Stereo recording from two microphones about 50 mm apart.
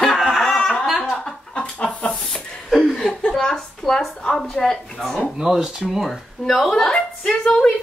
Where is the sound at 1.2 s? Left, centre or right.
Centre.